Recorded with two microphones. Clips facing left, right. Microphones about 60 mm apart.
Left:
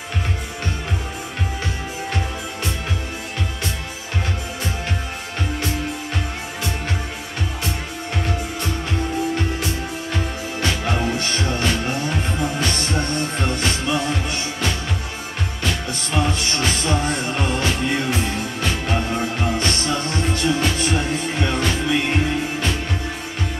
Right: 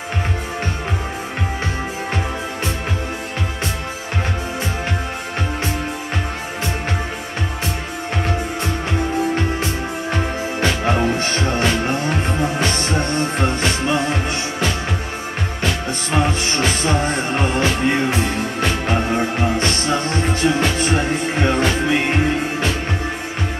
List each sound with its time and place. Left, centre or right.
10.1 s music: right
15.6 s music: right